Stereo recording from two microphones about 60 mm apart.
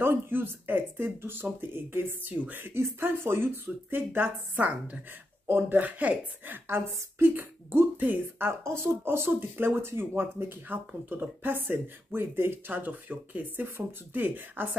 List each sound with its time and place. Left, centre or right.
0.0 s speech: right
5.5 s speech: right
6.7 s speech: right
8.6 s speech: right